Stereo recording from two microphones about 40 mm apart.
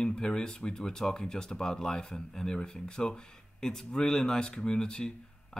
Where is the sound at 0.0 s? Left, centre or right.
Left.